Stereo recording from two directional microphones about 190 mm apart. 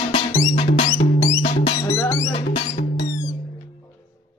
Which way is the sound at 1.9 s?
15° left (ahead or behind).